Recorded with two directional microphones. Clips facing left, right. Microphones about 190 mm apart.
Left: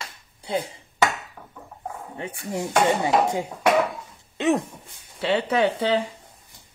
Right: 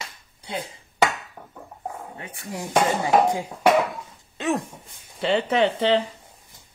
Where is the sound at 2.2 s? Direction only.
25° left (ahead or behind).